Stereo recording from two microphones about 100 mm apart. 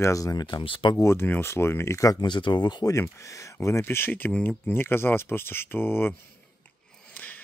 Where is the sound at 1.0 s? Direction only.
25° left (ahead or behind).